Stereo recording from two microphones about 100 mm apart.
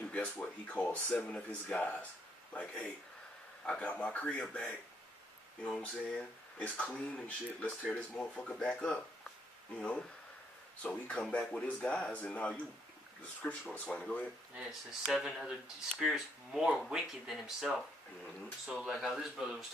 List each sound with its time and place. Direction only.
0.1 s speech: 15° left (ahead or behind)
5.8 s speech: 15° left (ahead or behind)
14.5 s speech: 5° right (ahead or behind)